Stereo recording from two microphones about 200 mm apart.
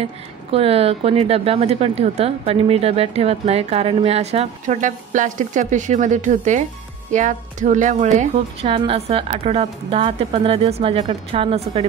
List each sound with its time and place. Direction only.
0.0 s a woman's voice: 30° right (ahead or behind)